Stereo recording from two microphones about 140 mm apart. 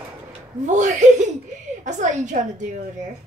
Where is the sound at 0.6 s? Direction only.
60° right (ahead or behind).